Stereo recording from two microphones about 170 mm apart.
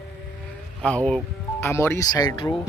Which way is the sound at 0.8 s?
5° left (ahead or behind).